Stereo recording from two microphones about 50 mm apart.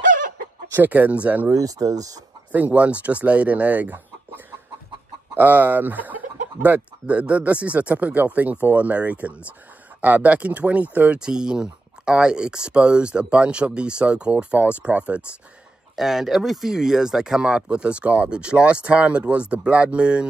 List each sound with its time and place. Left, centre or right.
0.7 s speech: right
2.5 s speech: right
11.1 s speech: centre
16.0 s speech: centre; by 20.2 s right